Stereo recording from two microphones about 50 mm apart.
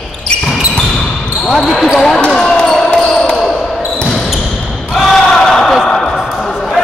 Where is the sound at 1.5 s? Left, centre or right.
Centre.